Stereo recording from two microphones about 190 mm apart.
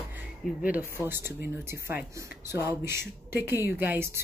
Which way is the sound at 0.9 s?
10° right (ahead or behind).